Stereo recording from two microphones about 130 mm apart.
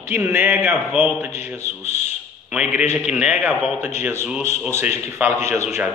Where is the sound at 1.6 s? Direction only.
60° left (ahead or behind).